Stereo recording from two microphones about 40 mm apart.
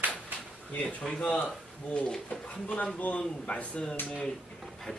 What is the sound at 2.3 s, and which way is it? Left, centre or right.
A man's voice, left.